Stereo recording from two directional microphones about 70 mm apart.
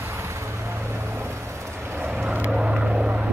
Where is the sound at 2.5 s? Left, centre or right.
Centre.